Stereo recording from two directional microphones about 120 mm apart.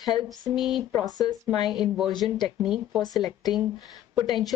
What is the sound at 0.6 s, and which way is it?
Speech, 5° right (ahead or behind).